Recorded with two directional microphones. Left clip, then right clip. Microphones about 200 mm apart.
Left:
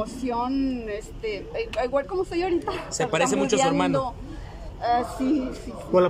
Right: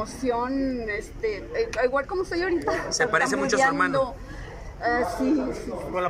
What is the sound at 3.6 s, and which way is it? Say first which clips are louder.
Speech: right 1 dB; 25° left (ahead or behind).